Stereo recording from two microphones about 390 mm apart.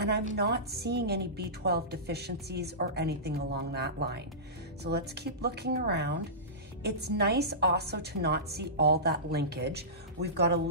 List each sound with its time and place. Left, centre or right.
0.0 s a woman's voice: right